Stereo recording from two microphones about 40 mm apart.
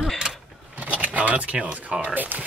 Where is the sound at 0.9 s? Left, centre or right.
Right.